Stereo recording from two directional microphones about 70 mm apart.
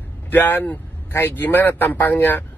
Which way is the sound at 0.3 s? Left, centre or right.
Left.